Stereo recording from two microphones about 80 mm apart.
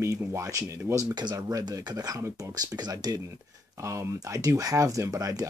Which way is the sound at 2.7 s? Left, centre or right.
Right.